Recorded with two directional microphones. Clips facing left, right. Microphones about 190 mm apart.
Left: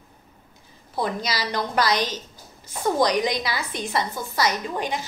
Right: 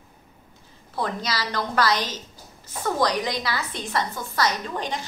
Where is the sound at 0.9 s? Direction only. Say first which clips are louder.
Left 1 dB; 10° left (ahead or behind).